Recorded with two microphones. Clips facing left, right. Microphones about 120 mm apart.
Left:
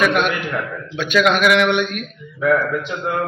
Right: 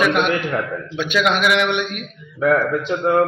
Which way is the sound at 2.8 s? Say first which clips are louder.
Right 6 dB; 40° right (ahead or behind).